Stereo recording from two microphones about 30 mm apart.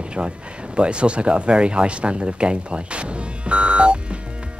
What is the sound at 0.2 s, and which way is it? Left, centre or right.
Speech, right.